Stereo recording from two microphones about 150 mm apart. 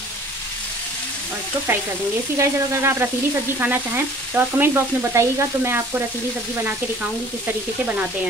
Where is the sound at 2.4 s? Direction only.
20° right (ahead or behind).